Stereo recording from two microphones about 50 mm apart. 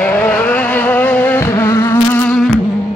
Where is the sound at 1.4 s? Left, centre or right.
Left.